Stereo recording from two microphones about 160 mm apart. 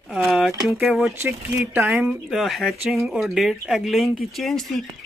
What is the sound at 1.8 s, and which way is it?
Speech, centre (ahead or behind).